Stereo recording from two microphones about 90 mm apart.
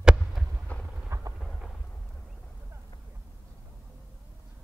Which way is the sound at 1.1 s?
35° right (ahead or behind).